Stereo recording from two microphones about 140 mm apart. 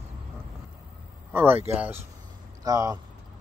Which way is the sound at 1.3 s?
15° right (ahead or behind).